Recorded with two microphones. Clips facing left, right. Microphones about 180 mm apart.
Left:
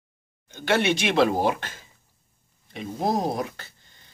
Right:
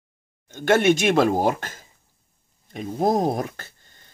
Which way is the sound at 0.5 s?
50° right (ahead or behind).